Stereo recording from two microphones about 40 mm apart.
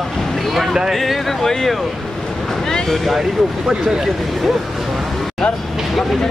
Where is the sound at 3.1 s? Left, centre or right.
Centre.